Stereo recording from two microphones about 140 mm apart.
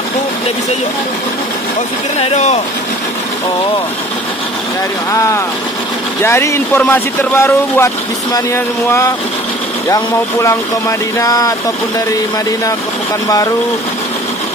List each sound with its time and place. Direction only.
2.1 s speech: 50° left (ahead or behind)
5.1 s speech: 20° left (ahead or behind)
9.8 s speech: 25° left (ahead or behind)